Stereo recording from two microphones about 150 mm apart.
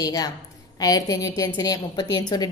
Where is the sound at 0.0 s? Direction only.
25° left (ahead or behind).